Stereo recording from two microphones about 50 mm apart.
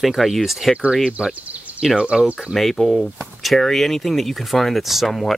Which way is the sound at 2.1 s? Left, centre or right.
Centre.